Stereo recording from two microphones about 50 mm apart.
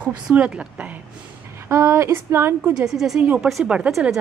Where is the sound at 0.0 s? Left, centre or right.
Right.